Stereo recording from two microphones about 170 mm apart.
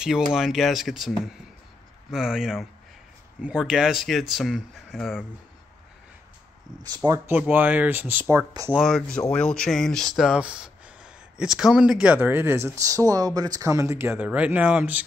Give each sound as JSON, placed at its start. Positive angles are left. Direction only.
{"t": 0.0, "sound": "speech", "side_deg": -5}
{"t": 7.1, "sound": "speech", "side_deg": -10}
{"t": 8.7, "sound": "speech", "side_deg": 0}